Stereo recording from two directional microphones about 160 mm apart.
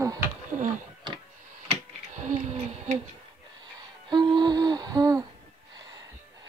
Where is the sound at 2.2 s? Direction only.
50° right (ahead or behind).